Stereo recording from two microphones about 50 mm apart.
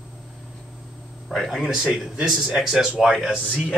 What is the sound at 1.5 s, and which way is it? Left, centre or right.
Speech, centre.